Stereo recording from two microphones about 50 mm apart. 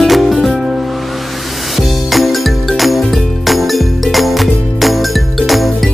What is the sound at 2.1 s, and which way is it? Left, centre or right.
Music, centre.